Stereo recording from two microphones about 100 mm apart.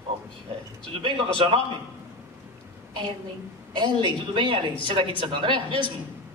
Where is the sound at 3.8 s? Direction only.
55° right (ahead or behind).